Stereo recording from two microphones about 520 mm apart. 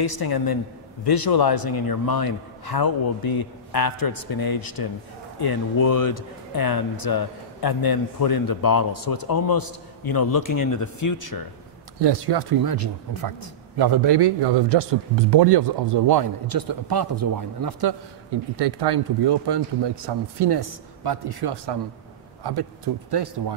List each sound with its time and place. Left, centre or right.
0.0 s a woman's voice: left
12.0 s speech: right